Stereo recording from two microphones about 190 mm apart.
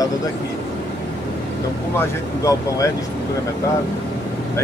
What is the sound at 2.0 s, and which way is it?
Speech, 15° left (ahead or behind).